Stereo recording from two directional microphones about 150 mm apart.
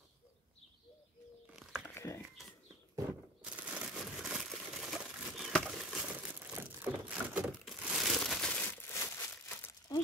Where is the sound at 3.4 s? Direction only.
10° right (ahead or behind).